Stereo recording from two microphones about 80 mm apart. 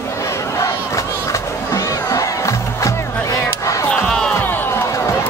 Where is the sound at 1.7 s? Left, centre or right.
Left.